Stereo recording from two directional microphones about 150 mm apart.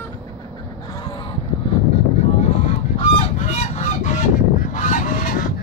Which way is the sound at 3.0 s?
50° left (ahead or behind).